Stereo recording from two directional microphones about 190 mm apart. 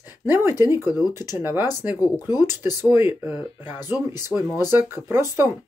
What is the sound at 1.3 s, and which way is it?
Speech, 10° right (ahead or behind).